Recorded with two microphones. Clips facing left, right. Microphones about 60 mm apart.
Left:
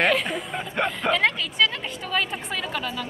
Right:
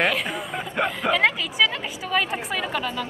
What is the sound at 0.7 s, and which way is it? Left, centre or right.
Speech, centre.